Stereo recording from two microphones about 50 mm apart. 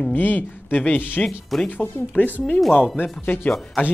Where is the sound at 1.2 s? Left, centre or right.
Centre.